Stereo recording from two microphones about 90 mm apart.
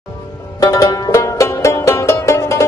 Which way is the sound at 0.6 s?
35° left (ahead or behind).